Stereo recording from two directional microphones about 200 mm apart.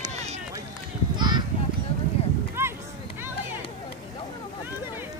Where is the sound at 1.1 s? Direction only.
20° right (ahead or behind).